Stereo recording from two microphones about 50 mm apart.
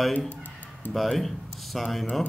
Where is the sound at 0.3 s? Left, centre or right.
Left.